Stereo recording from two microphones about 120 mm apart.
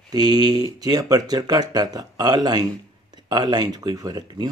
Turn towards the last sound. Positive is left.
turn(degrees=-35)  # may be behind; listen again after turning